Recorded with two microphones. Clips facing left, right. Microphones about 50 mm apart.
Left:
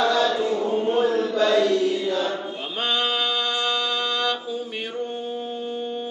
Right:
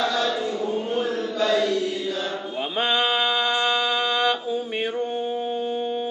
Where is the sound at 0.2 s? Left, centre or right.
Centre.